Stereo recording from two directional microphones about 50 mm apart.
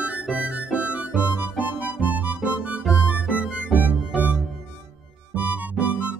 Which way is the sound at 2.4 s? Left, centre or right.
Right.